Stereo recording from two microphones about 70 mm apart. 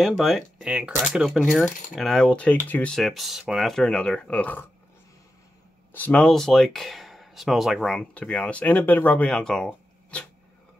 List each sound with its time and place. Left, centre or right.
0.0 s speech: centre
0.7 s speech: centre
1.0 s speech: centre
2.2 s speech: centre
2.9 s speech: centre; by 4.6 s left
6.1 s speech: centre
7.8 s speech: centre
8.1 s speech: centre
9.3 s speech: centre